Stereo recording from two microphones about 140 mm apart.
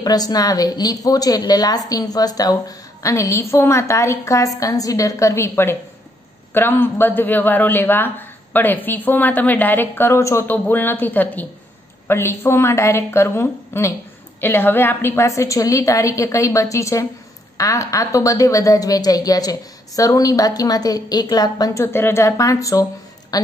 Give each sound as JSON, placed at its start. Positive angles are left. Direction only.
{"t": 0.0, "sound": "a woman's voice", "side_deg": 25}